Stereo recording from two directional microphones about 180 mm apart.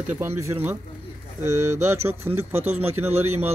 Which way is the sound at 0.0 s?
10° right (ahead or behind).